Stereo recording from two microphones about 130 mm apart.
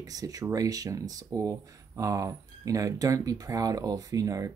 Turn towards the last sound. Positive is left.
turn(degrees=-25)  # may be behind; listen again after turning